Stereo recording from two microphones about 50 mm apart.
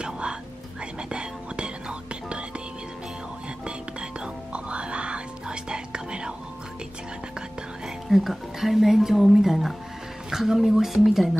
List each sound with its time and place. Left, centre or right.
0.0 s music: centre
1.1 s whispering: centre
4.2 s whispering: right
7.8 s a woman's voice: centre